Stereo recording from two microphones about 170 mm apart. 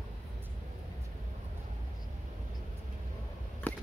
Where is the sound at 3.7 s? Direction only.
10° left (ahead or behind).